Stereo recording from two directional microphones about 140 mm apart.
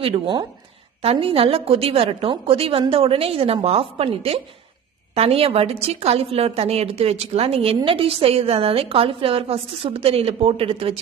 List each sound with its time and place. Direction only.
1.1 s a woman's voice: 40° right (ahead or behind)